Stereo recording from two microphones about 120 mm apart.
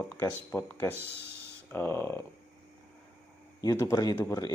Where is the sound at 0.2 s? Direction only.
15° left (ahead or behind).